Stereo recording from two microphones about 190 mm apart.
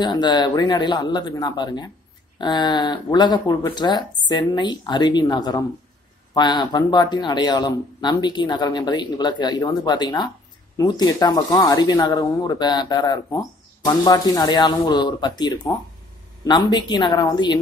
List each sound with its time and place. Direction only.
0.0 s speech: 25° left (ahead or behind)